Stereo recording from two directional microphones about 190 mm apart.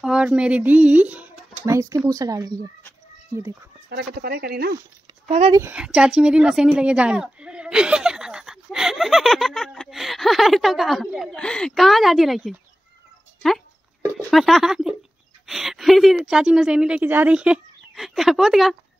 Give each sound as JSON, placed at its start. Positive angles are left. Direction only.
{"t": 0.0, "sound": "speech", "side_deg": -5}
{"t": 3.9, "sound": "speech", "side_deg": -60}
{"t": 5.5, "sound": "speech", "side_deg": -10}
{"t": 14.3, "sound": "a woman's voice", "side_deg": 0}